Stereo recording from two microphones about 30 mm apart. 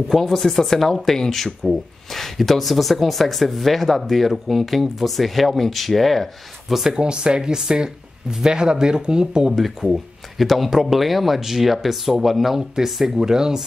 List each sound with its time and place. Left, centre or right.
0.2 s speech: centre
6.9 s speech: right
9.8 s speech: centre
12.5 s speech: centre
13.2 s speech: right